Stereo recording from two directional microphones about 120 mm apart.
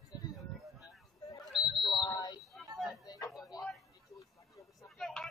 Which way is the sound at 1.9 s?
35° left (ahead or behind).